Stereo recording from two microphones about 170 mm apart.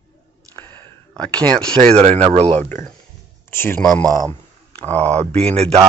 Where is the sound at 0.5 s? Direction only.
15° left (ahead or behind).